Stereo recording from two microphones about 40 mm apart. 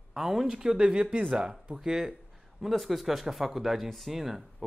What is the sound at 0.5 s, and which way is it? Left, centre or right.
Speech, centre.